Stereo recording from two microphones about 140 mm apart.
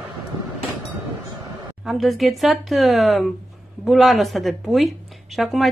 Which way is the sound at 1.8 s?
Centre (ahead or behind).